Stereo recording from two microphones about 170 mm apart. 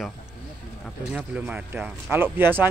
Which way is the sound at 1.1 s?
5° right (ahead or behind).